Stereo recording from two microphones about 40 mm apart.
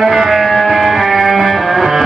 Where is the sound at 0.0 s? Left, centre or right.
Centre.